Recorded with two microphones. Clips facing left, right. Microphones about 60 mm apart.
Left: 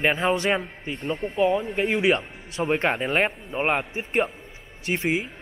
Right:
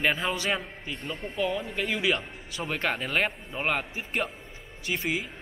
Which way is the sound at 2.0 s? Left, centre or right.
Left.